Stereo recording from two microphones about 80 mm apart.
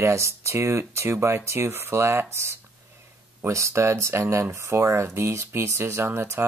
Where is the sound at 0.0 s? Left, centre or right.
Right.